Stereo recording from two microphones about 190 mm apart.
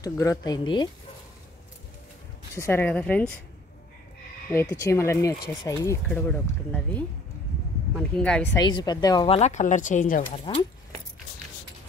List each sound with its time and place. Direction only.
0.0 s speech: 20° left (ahead or behind)
2.5 s speech: 15° left (ahead or behind)
4.5 s speech: 15° left (ahead or behind)
8.2 s speech: 5° left (ahead or behind)
8.5 s speech: 25° left (ahead or behind); by 10.4 s 45° left (ahead or behind)